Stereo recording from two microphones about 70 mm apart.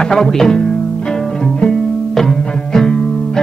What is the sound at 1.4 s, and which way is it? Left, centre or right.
Music, centre.